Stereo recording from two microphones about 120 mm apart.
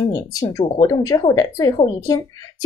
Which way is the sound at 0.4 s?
30° left (ahead or behind).